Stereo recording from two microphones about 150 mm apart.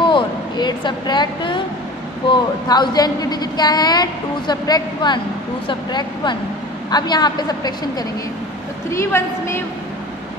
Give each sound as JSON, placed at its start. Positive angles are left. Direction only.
{"t": 0.0, "sound": "a woman's voice", "side_deg": 30}
{"t": 8.9, "sound": "a woman's voice", "side_deg": 15}